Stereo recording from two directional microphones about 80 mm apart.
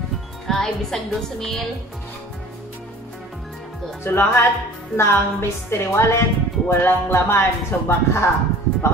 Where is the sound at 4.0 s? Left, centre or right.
Left.